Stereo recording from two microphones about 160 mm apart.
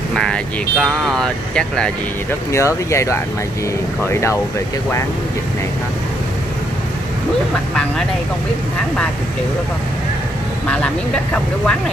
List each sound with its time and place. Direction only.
0.1 s speech: 5° left (ahead or behind)
2.5 s speech: 20° left (ahead or behind)